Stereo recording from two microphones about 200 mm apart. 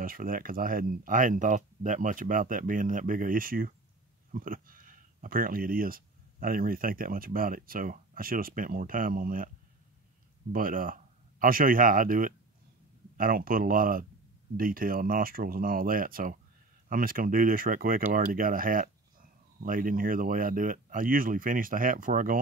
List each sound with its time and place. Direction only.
0.0 s speech: 45° right (ahead or behind)
10.5 s speech: 45° right (ahead or behind)